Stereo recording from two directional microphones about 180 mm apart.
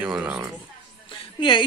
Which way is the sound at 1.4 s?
25° left (ahead or behind).